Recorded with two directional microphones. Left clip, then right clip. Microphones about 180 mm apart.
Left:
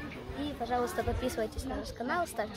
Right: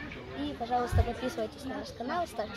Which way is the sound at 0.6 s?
5° left (ahead or behind).